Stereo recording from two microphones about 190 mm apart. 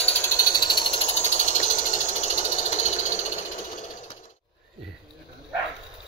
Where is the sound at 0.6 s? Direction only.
25° left (ahead or behind).